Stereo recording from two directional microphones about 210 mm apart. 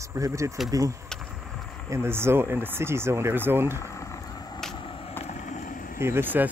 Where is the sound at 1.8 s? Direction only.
10° right (ahead or behind).